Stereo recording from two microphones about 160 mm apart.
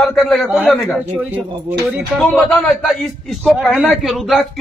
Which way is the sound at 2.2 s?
10° left (ahead or behind).